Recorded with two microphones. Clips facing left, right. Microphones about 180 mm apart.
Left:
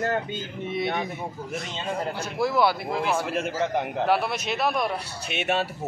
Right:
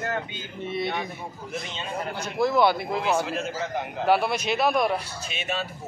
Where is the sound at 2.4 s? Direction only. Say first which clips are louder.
Right 2 dB; 5° left (ahead or behind).